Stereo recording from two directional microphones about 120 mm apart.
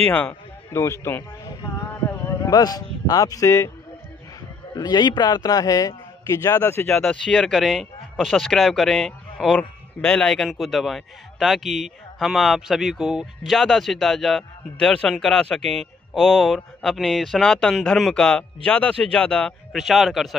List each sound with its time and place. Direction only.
0.1 s a man's voice: 15° left (ahead or behind)
1.8 s a sound: 20° left (ahead or behind)
2.2 s speech: 30° left (ahead or behind)
4.7 s a man's voice: 35° left (ahead or behind); by 7.0 s 20° left (ahead or behind)
7.0 s a man's voice: 5° left (ahead or behind)